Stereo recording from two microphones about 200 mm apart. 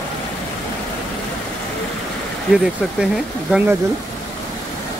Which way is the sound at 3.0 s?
5° right (ahead or behind).